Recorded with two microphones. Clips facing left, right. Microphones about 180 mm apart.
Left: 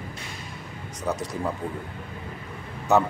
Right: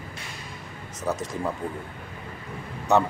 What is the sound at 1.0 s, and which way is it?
Speech, centre (ahead or behind).